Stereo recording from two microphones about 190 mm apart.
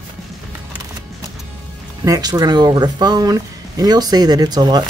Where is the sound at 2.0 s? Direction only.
20° right (ahead or behind).